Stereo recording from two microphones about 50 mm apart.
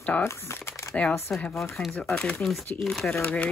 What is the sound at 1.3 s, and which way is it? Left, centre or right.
Speech, centre.